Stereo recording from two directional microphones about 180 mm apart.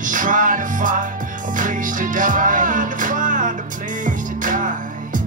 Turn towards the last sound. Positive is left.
turn(degrees=-45)  # may be behind; listen again after turning